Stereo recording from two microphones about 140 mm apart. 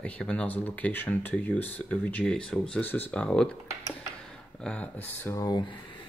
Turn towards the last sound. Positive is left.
turn(degrees=30)  # may be behind; listen again after turning